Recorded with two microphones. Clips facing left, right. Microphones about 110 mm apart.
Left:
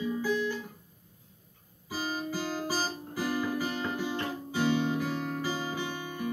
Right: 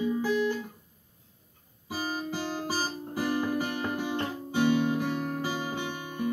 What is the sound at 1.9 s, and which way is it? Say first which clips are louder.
Music: right 1 dB; 25° right (ahead or behind).